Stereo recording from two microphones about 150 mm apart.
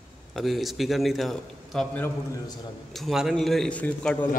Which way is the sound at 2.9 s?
Centre (ahead or behind).